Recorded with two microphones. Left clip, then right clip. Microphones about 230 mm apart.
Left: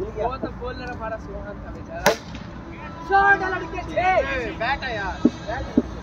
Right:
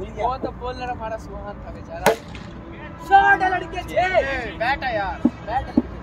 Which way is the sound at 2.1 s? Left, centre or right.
Centre.